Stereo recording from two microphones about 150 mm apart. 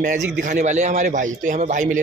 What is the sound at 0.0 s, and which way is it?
A man's voice, 60° right (ahead or behind).